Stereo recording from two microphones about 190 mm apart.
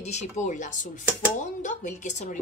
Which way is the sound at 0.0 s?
35° left (ahead or behind).